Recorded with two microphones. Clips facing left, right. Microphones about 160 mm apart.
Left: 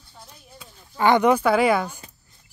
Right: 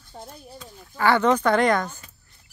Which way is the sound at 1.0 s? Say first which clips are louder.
Left 2 dB; 15° left (ahead or behind).